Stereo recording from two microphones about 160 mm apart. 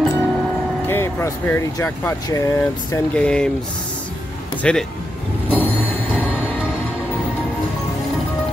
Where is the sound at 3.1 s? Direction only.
5° left (ahead or behind).